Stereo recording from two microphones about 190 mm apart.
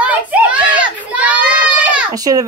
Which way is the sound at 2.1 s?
20° right (ahead or behind).